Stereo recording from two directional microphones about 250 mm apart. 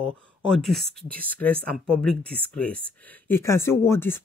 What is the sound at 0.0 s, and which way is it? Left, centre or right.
Speech, centre.